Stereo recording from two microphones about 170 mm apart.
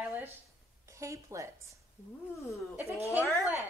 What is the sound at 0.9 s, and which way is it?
Speech, 20° right (ahead or behind).